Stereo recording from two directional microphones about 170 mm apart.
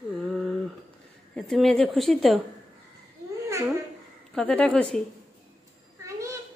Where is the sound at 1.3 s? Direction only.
Centre (ahead or behind).